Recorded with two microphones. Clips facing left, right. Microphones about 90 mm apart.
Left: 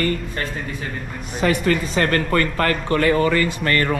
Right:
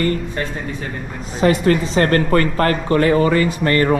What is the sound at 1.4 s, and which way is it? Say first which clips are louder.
Speech: right 4 dB; 35° right (ahead or behind).